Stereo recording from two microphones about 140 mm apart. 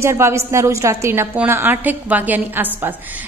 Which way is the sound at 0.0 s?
20° right (ahead or behind).